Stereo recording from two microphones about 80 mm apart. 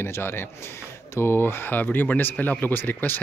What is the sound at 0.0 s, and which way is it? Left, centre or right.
A man's voice, left.